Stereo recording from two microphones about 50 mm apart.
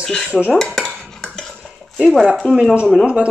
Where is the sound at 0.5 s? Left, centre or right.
Centre.